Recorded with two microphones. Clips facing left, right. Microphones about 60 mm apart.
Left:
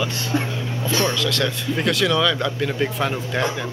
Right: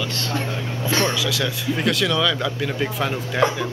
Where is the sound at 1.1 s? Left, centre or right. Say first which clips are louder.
Left 1 dB; centre.